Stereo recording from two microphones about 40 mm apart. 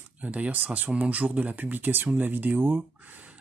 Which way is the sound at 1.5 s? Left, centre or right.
Right.